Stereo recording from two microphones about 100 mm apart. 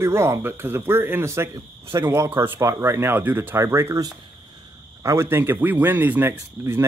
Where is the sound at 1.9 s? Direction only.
40° right (ahead or behind).